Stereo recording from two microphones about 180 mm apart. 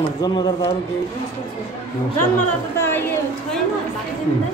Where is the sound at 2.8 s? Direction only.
15° left (ahead or behind).